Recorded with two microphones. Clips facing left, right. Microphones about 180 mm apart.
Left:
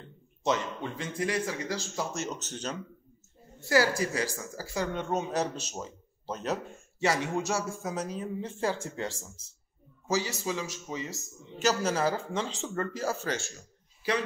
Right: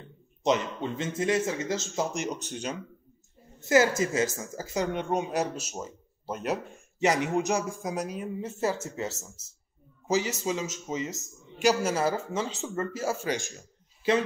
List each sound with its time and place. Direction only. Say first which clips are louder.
0.4 s speech: right 3 dB; 20° right (ahead or behind)
3.6 s a woman's voice: right 3 dB; 20° right (ahead or behind); by 9.3 s 5° right (ahead or behind)
10.0 s a woman's voice: right 3 dB; 20° right (ahead or behind)